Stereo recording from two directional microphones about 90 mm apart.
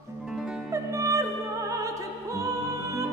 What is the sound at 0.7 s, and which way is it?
Opera, 35° right (ahead or behind).